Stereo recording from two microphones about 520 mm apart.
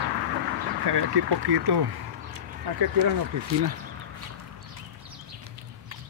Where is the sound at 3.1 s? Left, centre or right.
Right.